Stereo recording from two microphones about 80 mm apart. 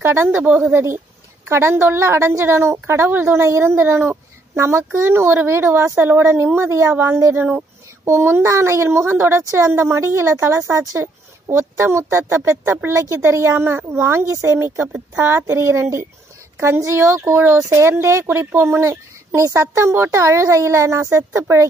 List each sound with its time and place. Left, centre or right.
0.0 s speech: right
0.7 s speech: right